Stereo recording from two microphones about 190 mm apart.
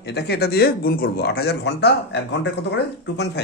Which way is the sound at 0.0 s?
60° left (ahead or behind).